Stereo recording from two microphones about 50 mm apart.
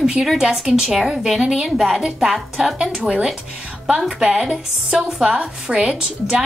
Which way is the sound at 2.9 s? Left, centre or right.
Centre.